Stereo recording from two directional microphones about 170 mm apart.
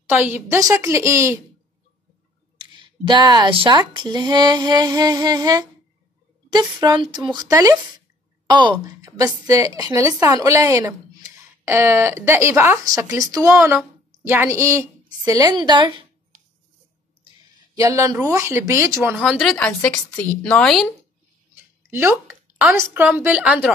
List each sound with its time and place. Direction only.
0.1 s a woman's voice: 10° right (ahead or behind)
2.5 s a woman's voice: 25° right (ahead or behind)
17.7 s a woman's voice: 20° right (ahead or behind)
19.1 s a woman's voice: centre (ahead or behind)
21.9 s a woman's voice: 10° right (ahead or behind)